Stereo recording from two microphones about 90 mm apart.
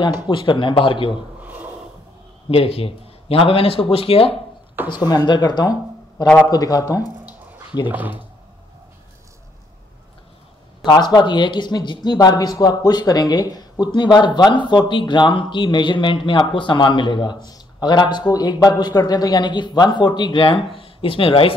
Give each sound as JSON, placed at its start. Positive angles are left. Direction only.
{"t": 0.0, "sound": "speech", "side_deg": 60}
{"t": 1.4, "sound": "a sound", "side_deg": -20}
{"t": 2.5, "sound": "a man's voice", "side_deg": 90}
{"t": 4.8, "sound": "speech", "side_deg": 50}
{"t": 7.9, "sound": "speech", "side_deg": -20}
{"t": 10.8, "sound": "speech", "side_deg": 50}